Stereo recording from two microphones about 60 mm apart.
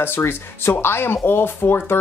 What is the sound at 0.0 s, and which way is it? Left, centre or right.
Speech, left.